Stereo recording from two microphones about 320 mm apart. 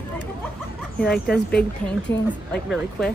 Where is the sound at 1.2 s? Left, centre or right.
Centre.